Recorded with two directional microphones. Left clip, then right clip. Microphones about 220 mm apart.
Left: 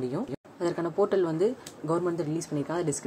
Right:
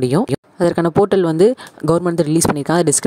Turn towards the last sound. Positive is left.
turn(degrees=-45)  # may be behind; listen again after turning